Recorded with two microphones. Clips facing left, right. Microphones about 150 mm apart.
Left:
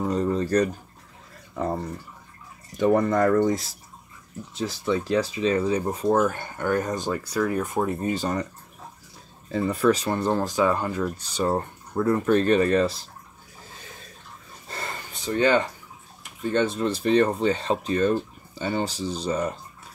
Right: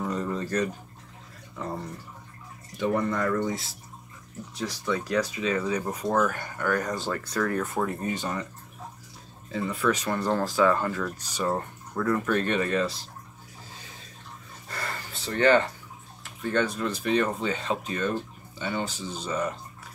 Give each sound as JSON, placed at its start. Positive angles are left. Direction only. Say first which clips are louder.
{"t": 0.0, "sound": "a sound", "louder": "left 6 dB", "side_deg": 30}
{"t": 1.5, "sound": "speech", "louder": "left 7 dB", "side_deg": 45}
{"t": 2.8, "sound": "speech", "louder": "left 6 dB", "side_deg": 45}
{"t": 4.6, "sound": "speech", "louder": "left 4 dB", "side_deg": 25}
{"t": 8.1, "sound": "speech", "louder": "left 5 dB", "side_deg": 35}
{"t": 9.5, "sound": "speech", "louder": "left 5 dB", "side_deg": 40}
{"t": 11.2, "sound": "speech", "louder": "left 3 dB", "side_deg": 30}
{"t": 15.1, "sound": "speech", "louder": "even", "side_deg": 15}